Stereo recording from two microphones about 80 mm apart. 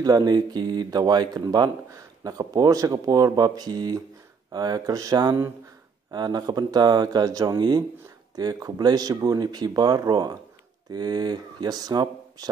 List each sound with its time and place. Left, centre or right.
0.0 s speech: right